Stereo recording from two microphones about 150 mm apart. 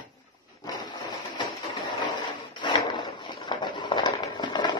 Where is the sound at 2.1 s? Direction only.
30° left (ahead or behind).